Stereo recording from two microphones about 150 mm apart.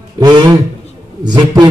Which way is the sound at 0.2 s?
30° right (ahead or behind).